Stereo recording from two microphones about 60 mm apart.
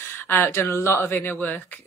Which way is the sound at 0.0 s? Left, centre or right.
Left.